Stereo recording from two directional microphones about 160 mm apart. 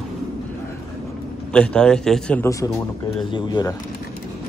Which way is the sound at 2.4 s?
20° left (ahead or behind).